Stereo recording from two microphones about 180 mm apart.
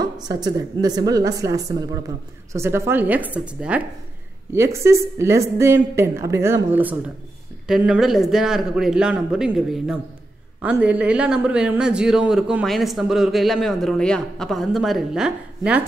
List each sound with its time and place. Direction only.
0.0 s a woman's voice: 20° right (ahead or behind); by 15.8 s 5° right (ahead or behind)